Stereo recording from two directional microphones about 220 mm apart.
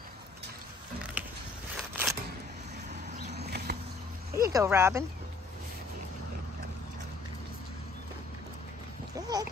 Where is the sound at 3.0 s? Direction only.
45° right (ahead or behind).